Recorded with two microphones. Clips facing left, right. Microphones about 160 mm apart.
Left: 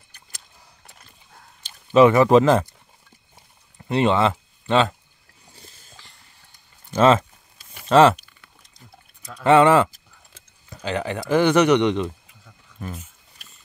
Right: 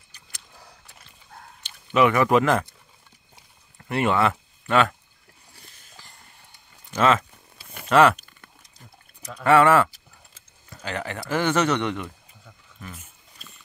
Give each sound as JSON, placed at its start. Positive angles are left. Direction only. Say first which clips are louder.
{"t": 1.9, "sound": "speech", "louder": "left 5 dB", "side_deg": 30}
{"t": 3.7, "sound": "speech", "louder": "left 3 dB", "side_deg": 20}
{"t": 5.5, "sound": "a sound", "louder": "left 5 dB", "side_deg": 25}
{"t": 6.9, "sound": "speech", "louder": "left 4 dB", "side_deg": 30}
{"t": 9.4, "sound": "a man's voice", "louder": "left 2 dB", "side_deg": 20}
{"t": 12.8, "sound": "speech", "louder": "left 7 dB", "side_deg": 35}